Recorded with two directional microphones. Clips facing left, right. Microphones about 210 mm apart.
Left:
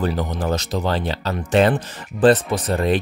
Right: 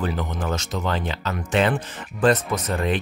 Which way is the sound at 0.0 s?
35° left (ahead or behind).